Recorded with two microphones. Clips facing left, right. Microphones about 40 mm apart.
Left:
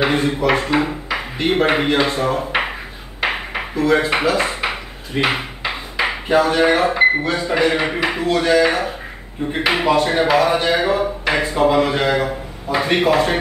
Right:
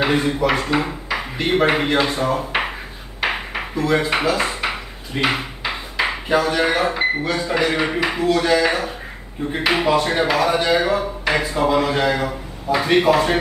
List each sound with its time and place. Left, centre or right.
0.0 s speech: centre
3.2 s a sound: centre
5.1 s speech: centre